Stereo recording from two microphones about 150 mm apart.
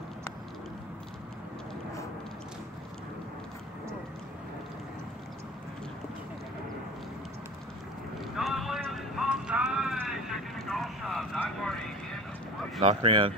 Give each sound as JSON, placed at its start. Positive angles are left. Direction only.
{"t": 8.4, "sound": "music", "side_deg": 0}
{"t": 11.3, "sound": "vehicle", "side_deg": 5}
{"t": 12.8, "sound": "speech", "side_deg": -40}